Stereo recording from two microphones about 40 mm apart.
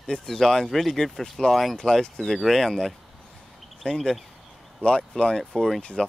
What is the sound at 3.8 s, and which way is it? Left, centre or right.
Speech, centre.